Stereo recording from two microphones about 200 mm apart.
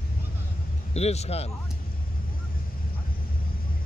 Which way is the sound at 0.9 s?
30° left (ahead or behind).